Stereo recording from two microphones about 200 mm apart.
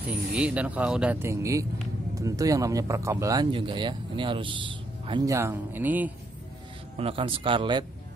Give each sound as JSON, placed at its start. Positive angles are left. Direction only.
{"t": 0.1, "sound": "speech", "side_deg": -5}
{"t": 7.0, "sound": "speech", "side_deg": -25}